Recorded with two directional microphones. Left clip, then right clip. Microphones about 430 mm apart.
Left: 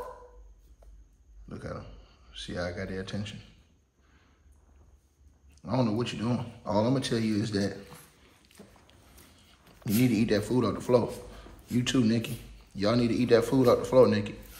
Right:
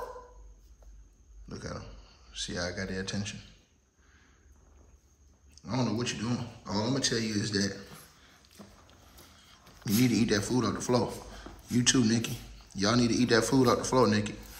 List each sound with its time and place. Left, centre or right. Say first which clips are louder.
1.5 s a sound: left 1 dB; centre
5.5 s speech: left 3 dB; centre
9.8 s speech: left 1 dB; centre